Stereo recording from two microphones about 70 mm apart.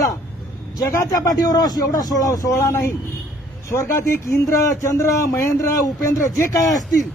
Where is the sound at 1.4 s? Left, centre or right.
Left.